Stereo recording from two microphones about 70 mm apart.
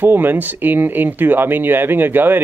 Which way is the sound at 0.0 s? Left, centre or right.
Right.